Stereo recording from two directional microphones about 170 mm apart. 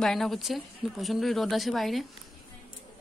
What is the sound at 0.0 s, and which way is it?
Speech, centre (ahead or behind).